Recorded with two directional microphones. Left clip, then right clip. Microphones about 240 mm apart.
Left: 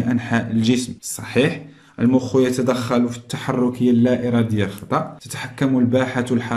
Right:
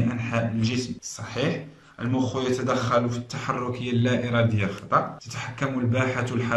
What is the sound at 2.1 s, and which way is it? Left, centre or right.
Speech, left.